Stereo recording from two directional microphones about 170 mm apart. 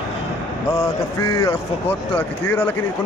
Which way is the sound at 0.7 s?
15° left (ahead or behind).